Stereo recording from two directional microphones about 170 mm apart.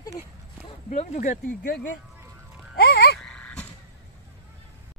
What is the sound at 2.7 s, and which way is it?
Music, 60° left (ahead or behind).